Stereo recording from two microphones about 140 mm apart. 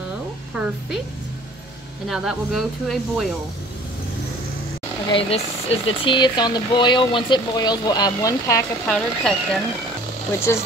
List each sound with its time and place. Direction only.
2.0 s speech: 5° right (ahead or behind)
5.1 s speech: 40° left (ahead or behind); by 8.6 s 25° left (ahead or behind)
8.8 s speech: 5° left (ahead or behind)
10.5 s speech: 20° left (ahead or behind)